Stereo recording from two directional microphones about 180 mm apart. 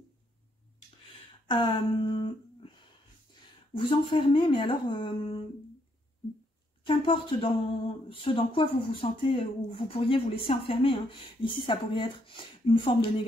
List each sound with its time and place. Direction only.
1.5 s a sound: 30° left (ahead or behind)
3.7 s speech: 30° left (ahead or behind)
6.8 s speech: 30° left (ahead or behind)